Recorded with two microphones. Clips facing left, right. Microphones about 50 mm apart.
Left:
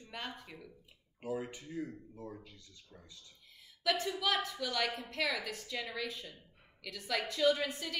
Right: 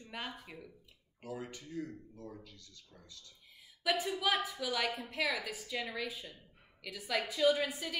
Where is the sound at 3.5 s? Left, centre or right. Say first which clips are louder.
Even; centre.